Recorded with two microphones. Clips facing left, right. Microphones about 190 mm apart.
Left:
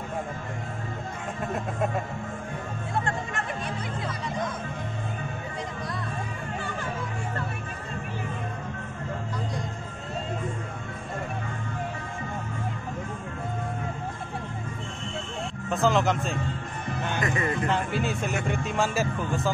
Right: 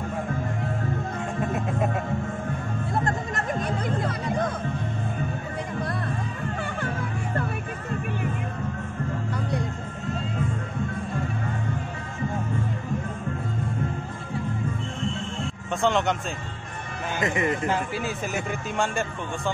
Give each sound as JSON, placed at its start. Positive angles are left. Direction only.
{"t": 3.0, "sound": "music", "side_deg": -40}
{"t": 15.7, "sound": "speech", "side_deg": 0}
{"t": 17.2, "sound": "speech", "side_deg": -20}
{"t": 17.6, "sound": "speech", "side_deg": 0}